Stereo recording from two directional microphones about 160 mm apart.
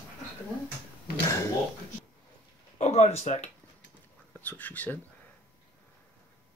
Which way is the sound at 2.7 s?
45° left (ahead or behind).